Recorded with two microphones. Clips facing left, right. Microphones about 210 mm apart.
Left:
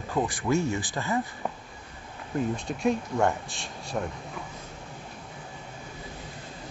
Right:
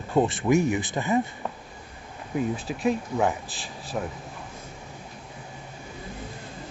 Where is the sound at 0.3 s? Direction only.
20° right (ahead or behind).